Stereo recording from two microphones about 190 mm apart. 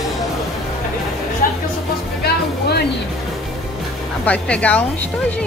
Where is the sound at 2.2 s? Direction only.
55° left (ahead or behind).